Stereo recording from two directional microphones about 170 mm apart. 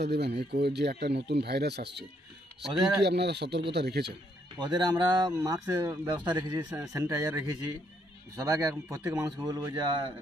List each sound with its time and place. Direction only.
0.0 s speech: 80° right
4.6 s speech: 25° right (ahead or behind)
6.1 s speech: 25° right (ahead or behind)
8.5 s speech: 15° right (ahead or behind)